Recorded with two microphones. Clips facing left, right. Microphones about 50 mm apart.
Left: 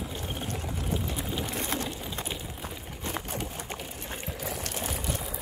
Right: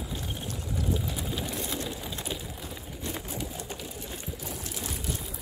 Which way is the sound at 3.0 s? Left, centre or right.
Left.